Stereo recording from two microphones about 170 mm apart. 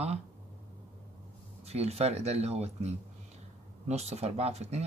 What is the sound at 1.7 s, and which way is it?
Speech, 40° right (ahead or behind).